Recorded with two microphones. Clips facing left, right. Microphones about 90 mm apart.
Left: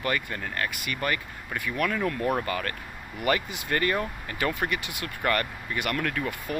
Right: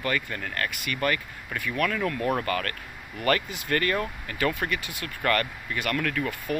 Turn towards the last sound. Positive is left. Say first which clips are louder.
# right 2 dB
turn(degrees=20)  # may be behind; listen again after turning